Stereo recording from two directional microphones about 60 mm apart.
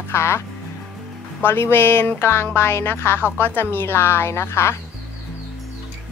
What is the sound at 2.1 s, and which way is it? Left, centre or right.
Music, left.